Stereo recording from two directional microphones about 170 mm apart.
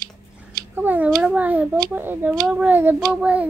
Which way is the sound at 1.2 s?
10° right (ahead or behind).